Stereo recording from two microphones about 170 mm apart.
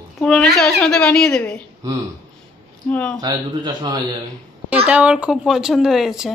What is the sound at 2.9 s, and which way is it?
Speech, 10° left (ahead or behind).